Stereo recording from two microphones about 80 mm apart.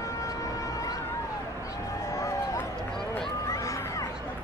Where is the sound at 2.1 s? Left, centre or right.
Left.